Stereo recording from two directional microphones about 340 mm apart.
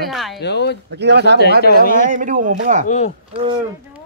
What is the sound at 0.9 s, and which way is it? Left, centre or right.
Speech, right.